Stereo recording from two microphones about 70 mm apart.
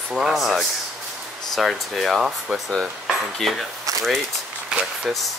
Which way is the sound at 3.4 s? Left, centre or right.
Centre.